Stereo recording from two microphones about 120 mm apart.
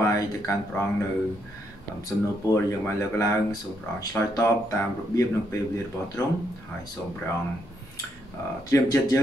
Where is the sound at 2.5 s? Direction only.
25° left (ahead or behind).